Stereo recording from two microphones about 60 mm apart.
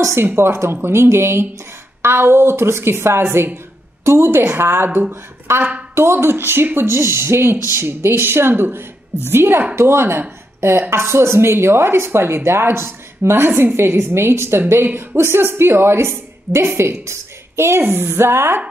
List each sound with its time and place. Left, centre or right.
0.0 s speech: right
17.0 s a sound: right
17.8 s speech: right